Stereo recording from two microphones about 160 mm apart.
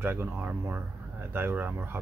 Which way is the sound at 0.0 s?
15° right (ahead or behind).